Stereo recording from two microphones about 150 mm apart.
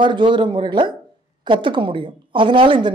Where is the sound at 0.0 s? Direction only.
30° right (ahead or behind).